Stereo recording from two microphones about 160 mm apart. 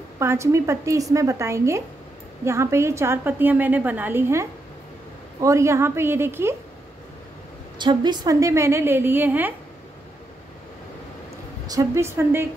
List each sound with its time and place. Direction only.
0.2 s a woman's voice: 15° right (ahead or behind)
7.8 s a woman's voice: 30° right (ahead or behind); by 9.5 s 10° right (ahead or behind)
11.6 s a woman's voice: 20° right (ahead or behind)